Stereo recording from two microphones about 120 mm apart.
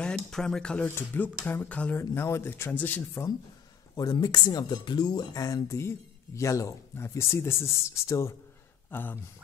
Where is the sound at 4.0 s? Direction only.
35° left (ahead or behind); by 9.2 s 15° left (ahead or behind).